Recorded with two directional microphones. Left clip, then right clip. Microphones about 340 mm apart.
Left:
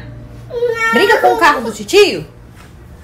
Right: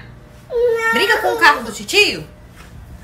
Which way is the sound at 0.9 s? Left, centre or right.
Centre.